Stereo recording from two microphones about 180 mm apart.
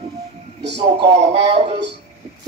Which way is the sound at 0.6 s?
70° right (ahead or behind).